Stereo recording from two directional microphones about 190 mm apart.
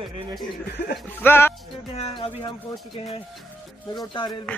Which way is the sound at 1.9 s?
30° left (ahead or behind).